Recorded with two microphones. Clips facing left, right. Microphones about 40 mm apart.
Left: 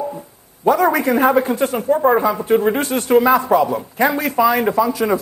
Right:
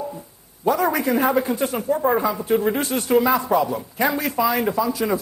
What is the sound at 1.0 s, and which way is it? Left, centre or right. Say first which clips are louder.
Speech: left 5 dB; left.